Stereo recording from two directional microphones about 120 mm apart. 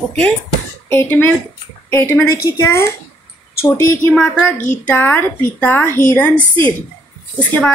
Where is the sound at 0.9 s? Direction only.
20° left (ahead or behind).